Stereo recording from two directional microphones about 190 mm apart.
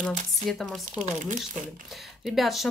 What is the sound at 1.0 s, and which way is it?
Speech, 40° right (ahead or behind).